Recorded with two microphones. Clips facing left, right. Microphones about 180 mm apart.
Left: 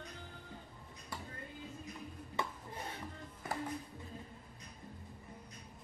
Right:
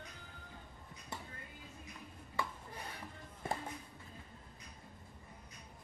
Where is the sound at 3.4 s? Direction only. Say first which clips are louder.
Right 1 dB; 25° right (ahead or behind).